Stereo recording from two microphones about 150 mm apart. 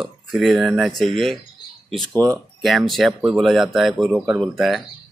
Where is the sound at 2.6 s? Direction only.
Centre (ahead or behind).